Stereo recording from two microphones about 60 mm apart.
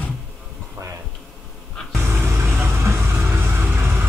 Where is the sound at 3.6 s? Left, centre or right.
Right.